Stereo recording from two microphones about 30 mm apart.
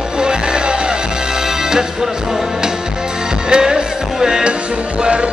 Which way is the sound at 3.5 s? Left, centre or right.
Right.